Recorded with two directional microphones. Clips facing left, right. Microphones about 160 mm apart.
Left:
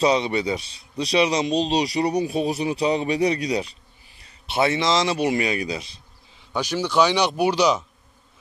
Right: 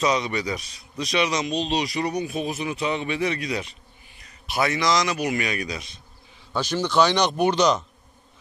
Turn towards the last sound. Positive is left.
turn(degrees=10)  # may be behind; listen again after turning